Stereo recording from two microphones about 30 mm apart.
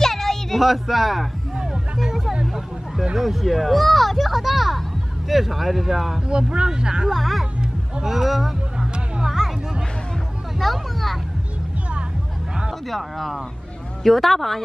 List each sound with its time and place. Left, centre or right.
0.0 s a sound: centre
0.6 s speech: centre
1.6 s music: centre
3.2 s speech: centre
6.2 s speech: right
7.1 s speech: centre
9.2 s music: centre
10.6 s a sound: centre
12.8 s speech: centre